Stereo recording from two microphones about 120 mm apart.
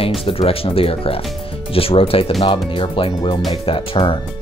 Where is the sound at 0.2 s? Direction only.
50° left (ahead or behind).